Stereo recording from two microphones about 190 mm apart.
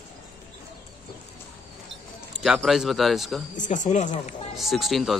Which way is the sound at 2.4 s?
Centre (ahead or behind).